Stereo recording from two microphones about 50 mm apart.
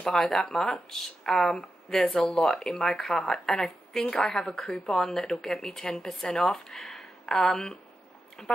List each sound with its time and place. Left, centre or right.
0.0 s speech: centre